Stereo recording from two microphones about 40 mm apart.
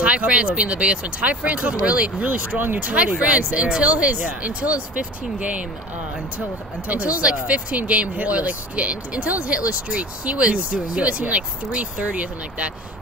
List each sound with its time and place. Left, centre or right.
0.0 s speech: right
6.9 s speech: right